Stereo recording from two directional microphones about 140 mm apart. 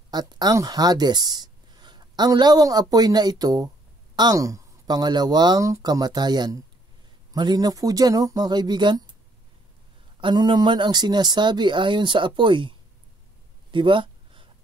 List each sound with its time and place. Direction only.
0.1 s speech: 30° right (ahead or behind)
10.2 s speech: 35° right (ahead or behind)
13.7 s a sound: 35° right (ahead or behind)